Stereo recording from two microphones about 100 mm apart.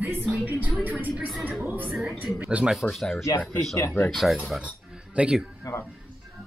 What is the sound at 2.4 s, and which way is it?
Speech, 10° right (ahead or behind).